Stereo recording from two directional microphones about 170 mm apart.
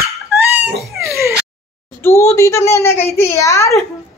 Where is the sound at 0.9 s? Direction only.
15° right (ahead or behind).